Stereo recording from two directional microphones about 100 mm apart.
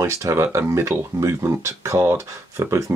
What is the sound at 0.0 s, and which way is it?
Speech, 25° right (ahead or behind).